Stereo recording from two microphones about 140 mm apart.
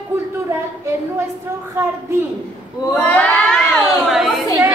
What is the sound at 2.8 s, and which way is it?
Speech, 20° left (ahead or behind).